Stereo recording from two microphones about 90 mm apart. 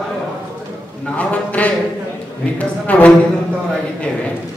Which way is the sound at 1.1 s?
15° left (ahead or behind).